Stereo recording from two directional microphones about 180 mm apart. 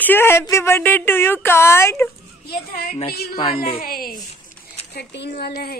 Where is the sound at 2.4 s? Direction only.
55° left (ahead or behind).